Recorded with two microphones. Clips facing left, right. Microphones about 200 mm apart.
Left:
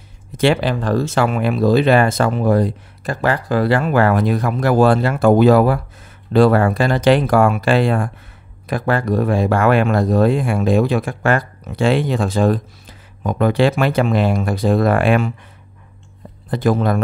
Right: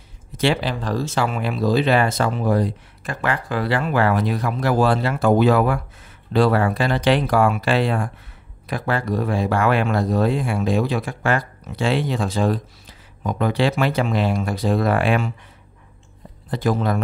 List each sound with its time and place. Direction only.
0.4 s speech: 55° left (ahead or behind)
3.0 s speech: 35° left (ahead or behind)
6.3 s speech: 50° left (ahead or behind)
16.4 s speech: 55° left (ahead or behind)